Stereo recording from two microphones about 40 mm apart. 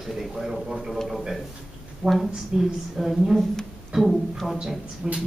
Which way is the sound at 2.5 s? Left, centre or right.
Centre.